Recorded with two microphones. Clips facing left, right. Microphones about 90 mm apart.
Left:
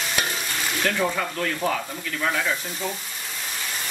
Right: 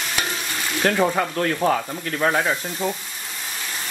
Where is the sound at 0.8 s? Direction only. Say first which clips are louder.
Right 6 dB; 45° right (ahead or behind).